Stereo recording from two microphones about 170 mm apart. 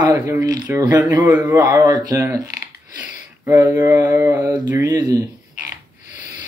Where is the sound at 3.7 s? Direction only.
15° right (ahead or behind).